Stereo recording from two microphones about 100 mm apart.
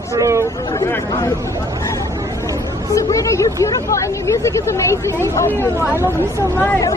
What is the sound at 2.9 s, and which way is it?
Speech, 35° left (ahead or behind).